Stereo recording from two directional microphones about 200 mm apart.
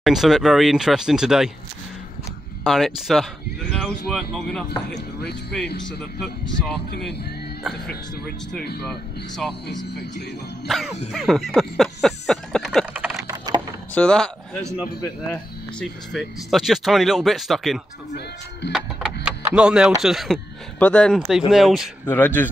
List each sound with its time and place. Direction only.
0.0 s speech: centre (ahead or behind)
2.6 s speech: centre (ahead or behind)
4.6 s speech: 55° left (ahead or behind)
6.9 s speech: 55° left (ahead or behind)
7.6 s speech: 5° left (ahead or behind)
9.4 s speech: centre (ahead or behind)
9.8 s speech: 55° left (ahead or behind)
10.7 s speech: centre (ahead or behind)
11.1 s a sound: centre (ahead or behind)
12.9 s typing: 10° right (ahead or behind)
13.9 s speech: 5° left (ahead or behind)
22.0 s speech: 10° left (ahead or behind)